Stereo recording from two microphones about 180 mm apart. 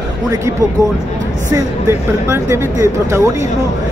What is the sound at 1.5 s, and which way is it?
Speech, 15° right (ahead or behind).